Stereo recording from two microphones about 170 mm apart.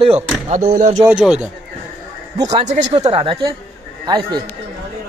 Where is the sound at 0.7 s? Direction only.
50° right (ahead or behind).